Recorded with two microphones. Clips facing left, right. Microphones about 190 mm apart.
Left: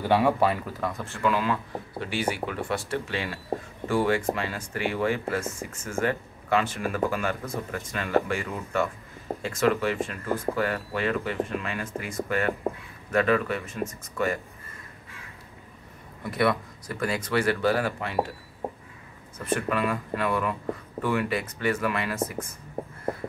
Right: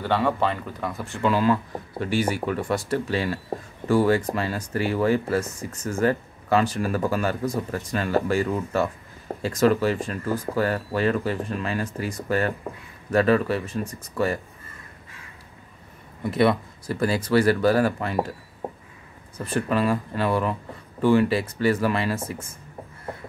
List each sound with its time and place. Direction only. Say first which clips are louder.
0.0 s speech: left 1 dB; 10° left (ahead or behind)
1.2 s speech: right 4 dB; 35° right (ahead or behind)
16.3 s speech: right 4 dB; 25° right (ahead or behind)
19.3 s speech: right 3 dB; 35° right (ahead or behind)